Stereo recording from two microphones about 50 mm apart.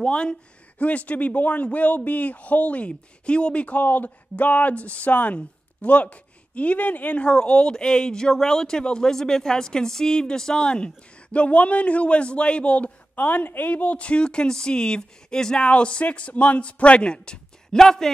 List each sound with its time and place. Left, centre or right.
0.0 s speech: centre